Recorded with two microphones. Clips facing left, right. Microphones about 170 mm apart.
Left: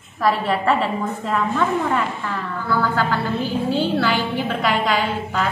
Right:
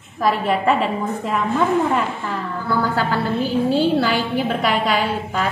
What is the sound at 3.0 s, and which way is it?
A woman's voice, 40° right (ahead or behind).